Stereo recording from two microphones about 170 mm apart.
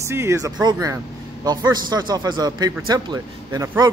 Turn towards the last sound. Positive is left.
turn(degrees=-15)  # may be behind; listen again after turning